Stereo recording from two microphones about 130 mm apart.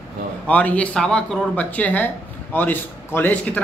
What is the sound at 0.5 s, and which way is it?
A man's voice, 10° left (ahead or behind).